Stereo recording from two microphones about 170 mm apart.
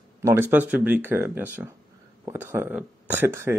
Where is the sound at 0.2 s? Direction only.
15° right (ahead or behind).